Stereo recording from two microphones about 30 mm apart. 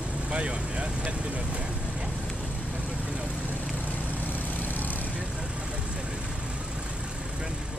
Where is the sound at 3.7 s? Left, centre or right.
Left.